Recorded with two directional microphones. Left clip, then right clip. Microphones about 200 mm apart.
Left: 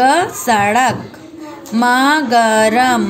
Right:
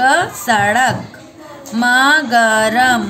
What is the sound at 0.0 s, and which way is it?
A woman's voice, 15° left (ahead or behind).